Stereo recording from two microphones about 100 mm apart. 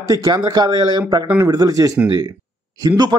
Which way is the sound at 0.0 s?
35° right (ahead or behind).